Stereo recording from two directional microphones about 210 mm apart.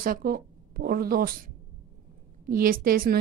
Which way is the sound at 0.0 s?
40° right (ahead or behind).